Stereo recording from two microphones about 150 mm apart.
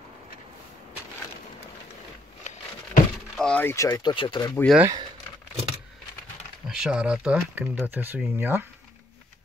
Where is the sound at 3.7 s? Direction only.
25° left (ahead or behind).